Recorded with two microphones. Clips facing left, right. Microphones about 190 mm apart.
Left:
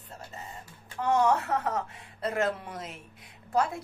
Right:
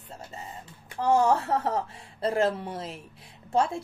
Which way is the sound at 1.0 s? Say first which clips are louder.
Right 2 dB; 30° right (ahead or behind).